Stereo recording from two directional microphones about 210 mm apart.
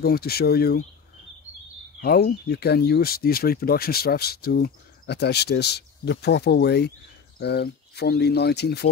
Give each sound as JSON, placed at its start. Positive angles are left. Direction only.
{"t": 0.0, "sound": "speech", "side_deg": 50}
{"t": 2.0, "sound": "speech", "side_deg": 50}